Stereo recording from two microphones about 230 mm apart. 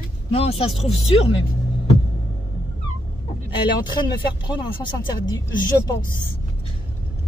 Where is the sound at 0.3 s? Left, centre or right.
Left.